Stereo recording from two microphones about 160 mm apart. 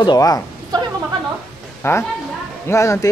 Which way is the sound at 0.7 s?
25° right (ahead or behind).